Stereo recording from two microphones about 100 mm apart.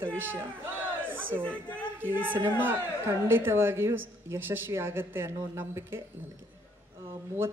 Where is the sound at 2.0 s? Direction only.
20° right (ahead or behind).